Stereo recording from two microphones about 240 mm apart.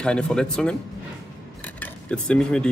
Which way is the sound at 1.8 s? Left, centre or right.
Centre.